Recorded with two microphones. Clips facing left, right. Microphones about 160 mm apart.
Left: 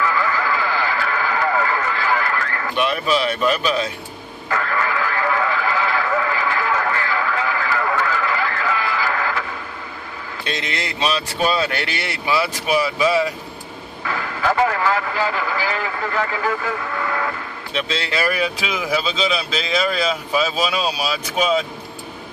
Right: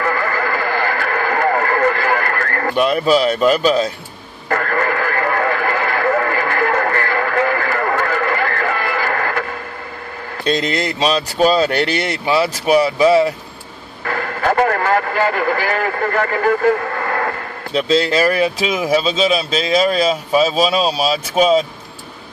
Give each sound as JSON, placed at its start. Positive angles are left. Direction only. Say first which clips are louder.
{"t": 0.0, "sound": "radio", "louder": "right 2 dB", "side_deg": -55}
{"t": 4.5, "sound": "radio", "louder": "right 4 dB", "side_deg": -50}
{"t": 10.4, "sound": "speech", "louder": "right 9 dB", "side_deg": -40}
{"t": 14.0, "sound": "a man's voice", "louder": "right 3 dB", "side_deg": -50}
{"t": 17.7, "sound": "speech", "louder": "right 8 dB", "side_deg": -40}